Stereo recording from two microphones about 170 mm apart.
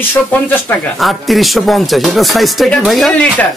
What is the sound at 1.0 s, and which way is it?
Speech, centre (ahead or behind).